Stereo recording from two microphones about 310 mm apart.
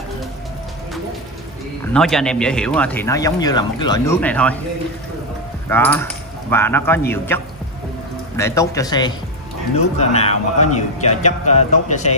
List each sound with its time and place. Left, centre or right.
2.0 s speech: centre
5.7 s cutlery: centre
7.1 s a man's voice: centre